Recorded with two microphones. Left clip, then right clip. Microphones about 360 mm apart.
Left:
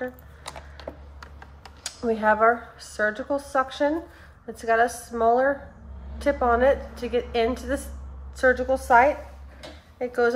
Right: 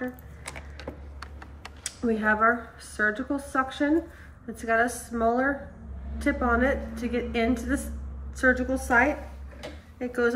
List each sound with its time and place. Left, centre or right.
1.8 s a woman's voice: centre